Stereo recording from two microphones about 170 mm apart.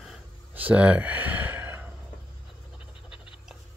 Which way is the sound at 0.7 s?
10° right (ahead or behind).